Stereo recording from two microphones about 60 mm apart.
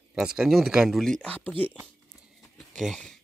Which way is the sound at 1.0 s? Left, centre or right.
Centre.